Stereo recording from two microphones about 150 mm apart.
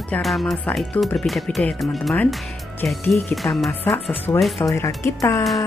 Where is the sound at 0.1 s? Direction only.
Centre (ahead or behind).